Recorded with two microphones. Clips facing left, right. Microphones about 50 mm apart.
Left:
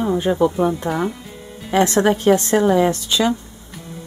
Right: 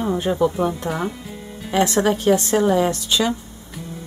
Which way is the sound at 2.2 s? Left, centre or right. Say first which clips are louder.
Left 2 dB; left.